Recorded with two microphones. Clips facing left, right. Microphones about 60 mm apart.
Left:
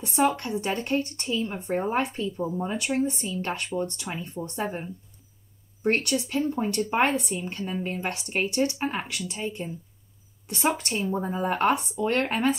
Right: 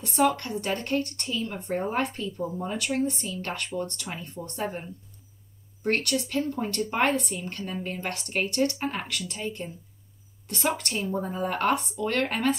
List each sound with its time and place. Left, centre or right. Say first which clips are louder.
0.0 s a woman's voice: even; left
5.9 s a woman's voice: left 2 dB; left